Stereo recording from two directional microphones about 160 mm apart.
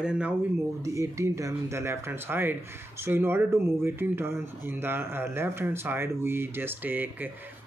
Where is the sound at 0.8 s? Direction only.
20° right (ahead or behind).